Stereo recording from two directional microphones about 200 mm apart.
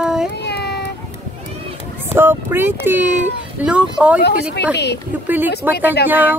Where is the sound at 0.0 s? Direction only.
5° right (ahead or behind).